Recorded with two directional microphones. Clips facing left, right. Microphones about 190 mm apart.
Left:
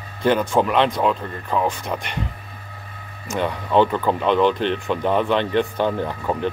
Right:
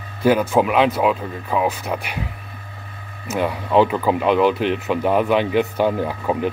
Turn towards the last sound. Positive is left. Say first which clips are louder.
# right 2 dB
turn(degrees=-5)  # may be behind; listen again after turning